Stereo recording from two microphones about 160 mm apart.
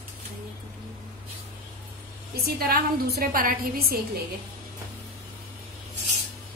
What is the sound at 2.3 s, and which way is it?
A woman's voice, 70° right (ahead or behind).